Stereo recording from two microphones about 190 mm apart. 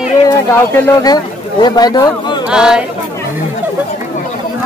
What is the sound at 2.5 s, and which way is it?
Speech, 5° right (ahead or behind).